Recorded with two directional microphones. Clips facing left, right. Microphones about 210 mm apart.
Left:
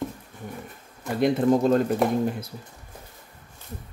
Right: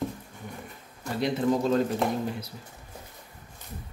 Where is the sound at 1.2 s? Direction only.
50° left (ahead or behind).